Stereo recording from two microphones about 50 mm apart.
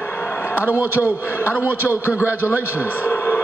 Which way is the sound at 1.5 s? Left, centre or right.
Right.